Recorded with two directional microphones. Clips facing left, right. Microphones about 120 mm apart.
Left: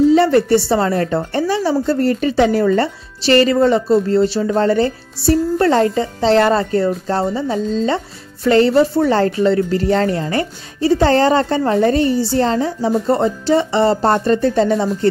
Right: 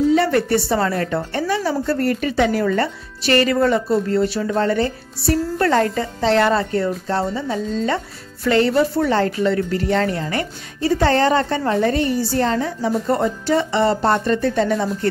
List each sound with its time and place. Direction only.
0.1 s speech: 30° left (ahead or behind)